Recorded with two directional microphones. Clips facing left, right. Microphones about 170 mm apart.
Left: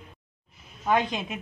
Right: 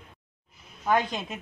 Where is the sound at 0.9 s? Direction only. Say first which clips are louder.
Left 1 dB; 15° left (ahead or behind).